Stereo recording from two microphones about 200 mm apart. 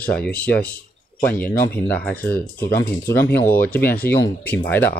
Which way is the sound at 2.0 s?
5° left (ahead or behind).